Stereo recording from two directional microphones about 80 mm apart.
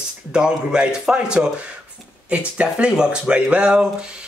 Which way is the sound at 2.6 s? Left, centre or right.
Centre.